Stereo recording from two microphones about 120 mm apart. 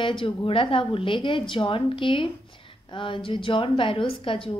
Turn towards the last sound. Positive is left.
turn(degrees=50)  # may be behind; listen again after turning